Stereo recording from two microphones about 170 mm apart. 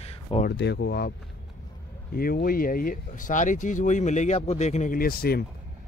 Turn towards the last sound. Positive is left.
turn(degrees=60)  # may be behind; listen again after turning